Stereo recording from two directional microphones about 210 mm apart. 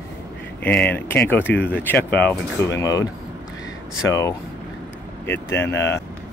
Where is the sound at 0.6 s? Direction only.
10° left (ahead or behind).